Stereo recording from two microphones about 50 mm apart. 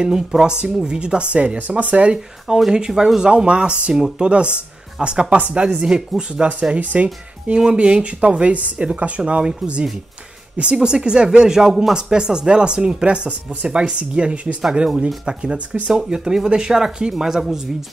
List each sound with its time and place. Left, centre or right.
0.0 s speech: centre
2.7 s speech: centre
6.7 s speech: right
14.6 s speech: centre